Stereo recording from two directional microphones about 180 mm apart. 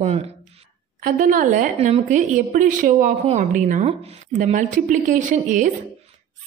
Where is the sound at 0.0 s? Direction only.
35° right (ahead or behind).